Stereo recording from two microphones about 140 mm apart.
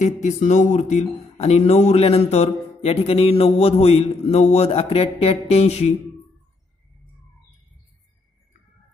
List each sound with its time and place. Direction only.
0.0 s speech: 60° left (ahead or behind)